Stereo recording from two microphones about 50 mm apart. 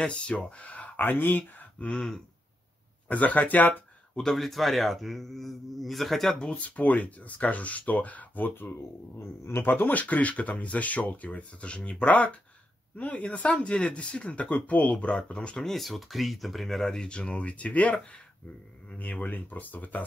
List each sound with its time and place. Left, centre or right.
0.0 s speech: left
1.9 s speech: centre
3.1 s speech: left
4.1 s speech: centre
6.4 s speech: left
8.6 s speech: left
15.6 s speech: centre
17.2 s speech: left